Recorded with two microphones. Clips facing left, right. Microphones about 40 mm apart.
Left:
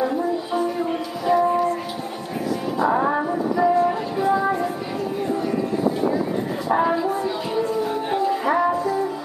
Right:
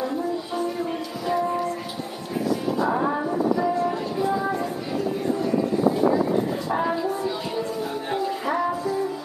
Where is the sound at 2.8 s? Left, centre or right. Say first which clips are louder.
Left 6 dB; centre.